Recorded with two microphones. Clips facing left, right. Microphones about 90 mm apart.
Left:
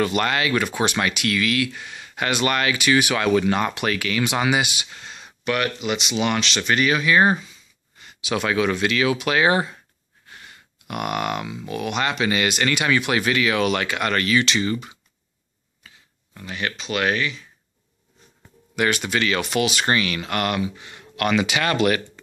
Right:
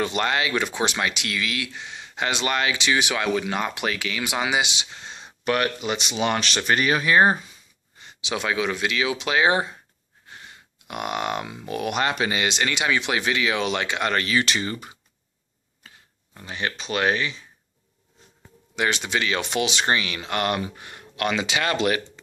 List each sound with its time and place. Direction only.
0.0 s speech: 25° right (ahead or behind)
5.4 s speech: 35° right (ahead or behind)
8.0 s a sound: 30° right (ahead or behind)
8.4 s speech: 15° right (ahead or behind); by 12.3 s 35° right (ahead or behind)
12.3 s speech: 20° right (ahead or behind)
16.3 s speech: 30° right (ahead or behind)
18.8 s speech: 20° right (ahead or behind)
20.6 s speech: 45° right (ahead or behind)
21.2 s speech: 25° right (ahead or behind)